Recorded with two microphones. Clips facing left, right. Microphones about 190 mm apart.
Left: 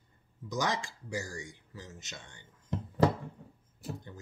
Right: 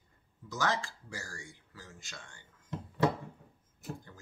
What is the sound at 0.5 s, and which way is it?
Speech, 15° left (ahead or behind).